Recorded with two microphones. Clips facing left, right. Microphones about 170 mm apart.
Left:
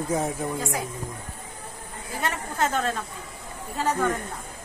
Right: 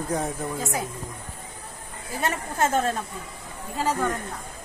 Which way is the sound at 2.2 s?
25° right (ahead or behind).